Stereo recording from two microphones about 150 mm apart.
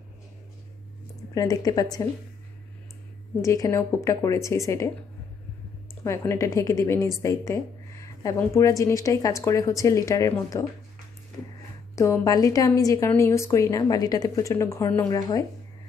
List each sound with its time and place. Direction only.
1.3 s a woman's voice: 25° left (ahead or behind)
3.3 s a woman's voice: 20° left (ahead or behind)
6.0 s a woman's voice: 20° left (ahead or behind)
11.9 s a woman's voice: 20° left (ahead or behind)